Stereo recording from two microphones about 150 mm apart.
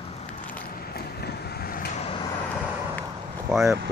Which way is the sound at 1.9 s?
45° left (ahead or behind).